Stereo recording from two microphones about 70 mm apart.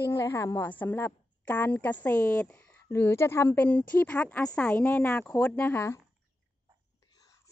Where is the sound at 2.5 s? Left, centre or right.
Left.